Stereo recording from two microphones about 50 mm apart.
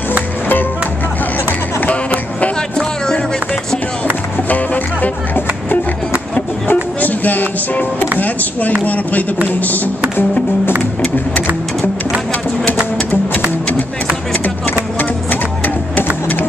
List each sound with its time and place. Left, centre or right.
1.8 s music: left
4.5 s music: left
8.2 s a sound: left
8.8 s speech: left